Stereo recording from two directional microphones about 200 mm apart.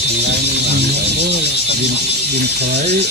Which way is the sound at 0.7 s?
55° right (ahead or behind).